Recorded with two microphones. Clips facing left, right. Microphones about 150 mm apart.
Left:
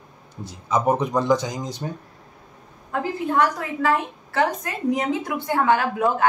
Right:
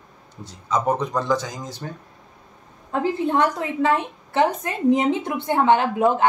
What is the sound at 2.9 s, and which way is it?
A woman's voice, 25° right (ahead or behind).